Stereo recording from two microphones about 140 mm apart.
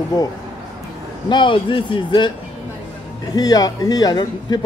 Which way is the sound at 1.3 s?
35° left (ahead or behind).